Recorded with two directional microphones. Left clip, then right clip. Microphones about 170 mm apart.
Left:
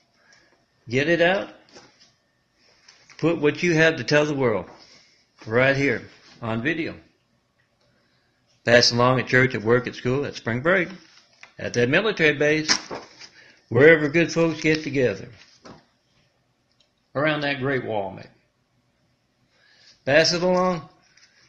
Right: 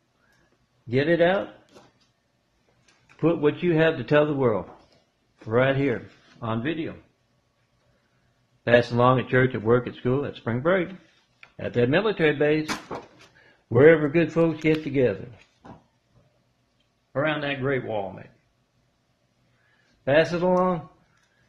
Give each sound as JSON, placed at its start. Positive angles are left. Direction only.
{"t": 0.8, "sound": "speech", "side_deg": -15}
{"t": 3.2, "sound": "a man's voice", "side_deg": 5}
{"t": 6.5, "sound": "speech", "side_deg": 15}
{"t": 8.9, "sound": "a man's voice", "side_deg": 0}
{"t": 17.1, "sound": "speech", "side_deg": 30}
{"t": 20.3, "sound": "speech", "side_deg": 10}